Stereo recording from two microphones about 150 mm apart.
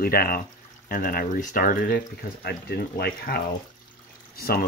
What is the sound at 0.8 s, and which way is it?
Speech, 70° left (ahead or behind).